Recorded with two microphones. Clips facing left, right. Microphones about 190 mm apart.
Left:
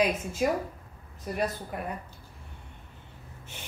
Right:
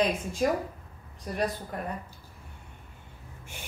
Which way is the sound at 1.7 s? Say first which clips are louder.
Even; 5° left (ahead or behind).